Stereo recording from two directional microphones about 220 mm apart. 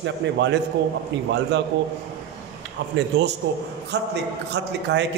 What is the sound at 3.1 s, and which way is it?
A man's voice, 50° right (ahead or behind).